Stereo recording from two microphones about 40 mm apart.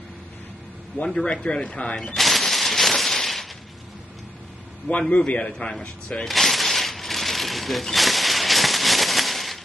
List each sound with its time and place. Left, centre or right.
1.0 s speech: centre
1.3 s speech: left
1.8 s a man's voice: left
2.1 s a sound: centre
5.1 s a man's voice: left
6.2 s a sound: centre